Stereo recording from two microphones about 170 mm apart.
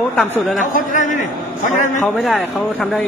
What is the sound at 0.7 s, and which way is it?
Speech, 50° left (ahead or behind).